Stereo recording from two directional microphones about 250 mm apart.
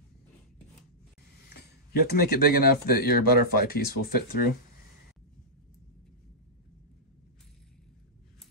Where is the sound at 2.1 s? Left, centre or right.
Left.